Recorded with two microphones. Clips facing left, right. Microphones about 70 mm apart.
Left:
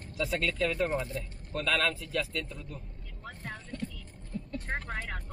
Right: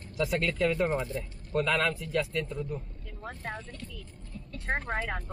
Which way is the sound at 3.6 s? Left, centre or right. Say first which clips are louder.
Left 5 dB; left.